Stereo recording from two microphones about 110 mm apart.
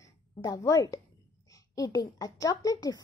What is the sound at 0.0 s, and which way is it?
A woman's voice, 35° left (ahead or behind).